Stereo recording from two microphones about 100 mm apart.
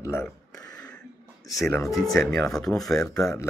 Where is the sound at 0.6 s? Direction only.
40° left (ahead or behind).